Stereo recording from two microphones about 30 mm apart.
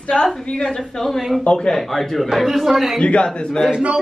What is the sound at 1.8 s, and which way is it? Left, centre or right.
Speech, centre.